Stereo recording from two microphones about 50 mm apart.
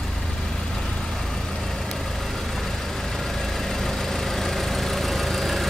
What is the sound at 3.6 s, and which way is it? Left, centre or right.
Vehicle, centre.